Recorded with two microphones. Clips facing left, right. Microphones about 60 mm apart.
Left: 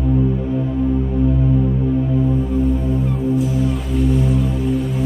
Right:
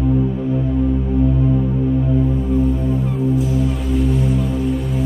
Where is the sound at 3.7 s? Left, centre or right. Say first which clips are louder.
Even; centre.